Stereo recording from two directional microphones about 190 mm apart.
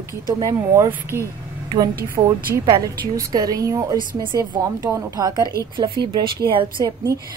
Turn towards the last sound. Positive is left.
turn(degrees=-25)  # may be behind; listen again after turning